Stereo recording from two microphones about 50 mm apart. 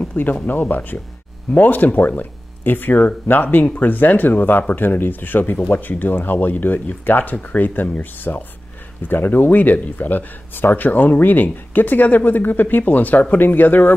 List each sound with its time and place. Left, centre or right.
0.0 s speech: left